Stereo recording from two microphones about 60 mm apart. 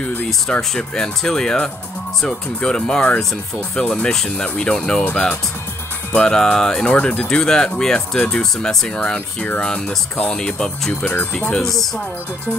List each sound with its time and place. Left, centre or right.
0.0 s speech: left
0.3 s speech: centre